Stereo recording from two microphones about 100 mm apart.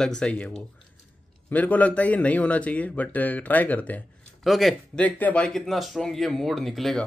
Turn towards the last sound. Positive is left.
turn(degrees=0)  # may be behind; listen again after turning